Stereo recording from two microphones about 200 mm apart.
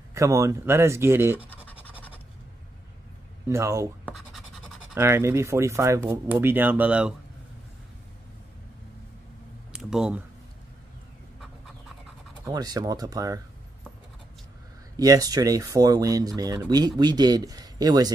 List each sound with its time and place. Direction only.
0.1 s speech: 15° right (ahead or behind)
3.4 s speech: 15° right (ahead or behind)
9.7 s a sound: 5° right (ahead or behind)
12.4 s speech: 20° right (ahead or behind)
15.0 s speech: 20° right (ahead or behind)